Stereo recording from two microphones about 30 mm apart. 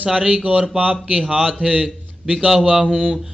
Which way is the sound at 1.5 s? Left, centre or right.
Right.